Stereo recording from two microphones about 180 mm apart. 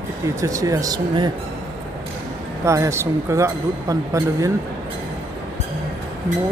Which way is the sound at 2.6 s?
15° right (ahead or behind).